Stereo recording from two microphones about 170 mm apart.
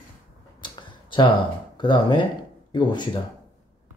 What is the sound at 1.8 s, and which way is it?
Speech, 30° left (ahead or behind).